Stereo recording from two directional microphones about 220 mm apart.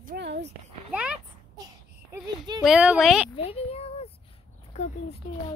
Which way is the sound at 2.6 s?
5° right (ahead or behind).